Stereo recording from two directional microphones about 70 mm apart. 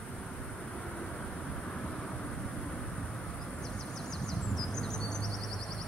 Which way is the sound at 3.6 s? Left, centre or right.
Centre.